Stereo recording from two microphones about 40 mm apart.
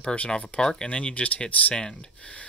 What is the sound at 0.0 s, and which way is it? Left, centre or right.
Speech, left.